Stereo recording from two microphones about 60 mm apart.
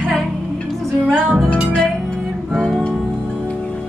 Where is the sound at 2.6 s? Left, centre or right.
Centre.